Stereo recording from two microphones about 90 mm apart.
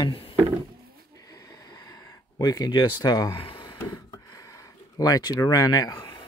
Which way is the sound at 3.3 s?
80° left.